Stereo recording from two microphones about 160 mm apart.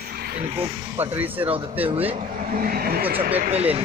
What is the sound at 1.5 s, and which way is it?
Speech, 35° right (ahead or behind).